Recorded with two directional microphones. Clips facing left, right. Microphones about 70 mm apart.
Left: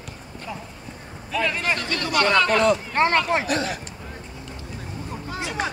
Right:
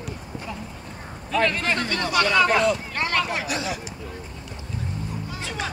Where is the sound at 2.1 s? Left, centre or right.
Left.